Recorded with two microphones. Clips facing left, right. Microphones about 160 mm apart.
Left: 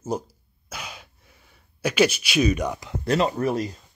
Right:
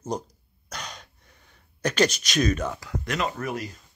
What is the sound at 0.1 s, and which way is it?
Speech, 5° left (ahead or behind).